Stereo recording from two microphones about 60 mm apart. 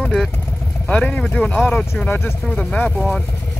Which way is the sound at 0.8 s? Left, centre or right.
Centre.